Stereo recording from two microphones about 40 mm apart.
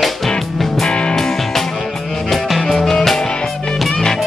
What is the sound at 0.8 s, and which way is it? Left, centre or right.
Music, left.